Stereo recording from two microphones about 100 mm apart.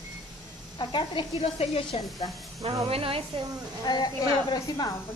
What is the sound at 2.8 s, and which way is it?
Speech, 70° right (ahead or behind).